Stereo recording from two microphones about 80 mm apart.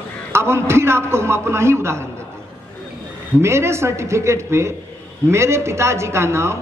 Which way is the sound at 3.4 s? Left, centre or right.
Right.